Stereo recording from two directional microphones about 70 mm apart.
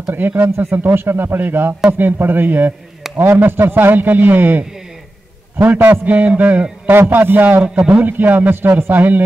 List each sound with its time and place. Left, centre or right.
0.1 s a man's voice: right